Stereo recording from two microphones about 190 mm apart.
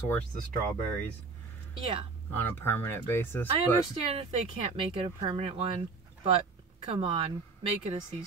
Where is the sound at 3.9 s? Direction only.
30° right (ahead or behind).